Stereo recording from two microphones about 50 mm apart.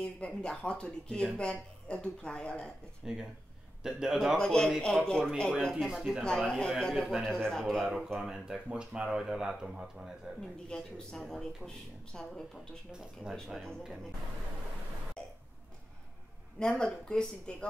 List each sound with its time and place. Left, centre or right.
0.0 s speech: left
3.0 s speech: centre
4.4 s speech: centre
5.9 s speech: centre
6.2 s speech: centre
7.1 s speech: centre
7.3 s speech: centre
7.8 s speech: centre
8.5 s speech: right
10.7 s speech: centre
13.3 s speech: centre
15.2 s cough: centre
16.5 s speech: centre